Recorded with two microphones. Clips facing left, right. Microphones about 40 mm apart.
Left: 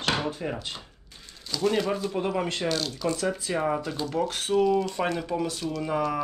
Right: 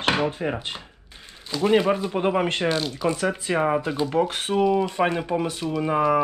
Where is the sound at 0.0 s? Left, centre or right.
Right.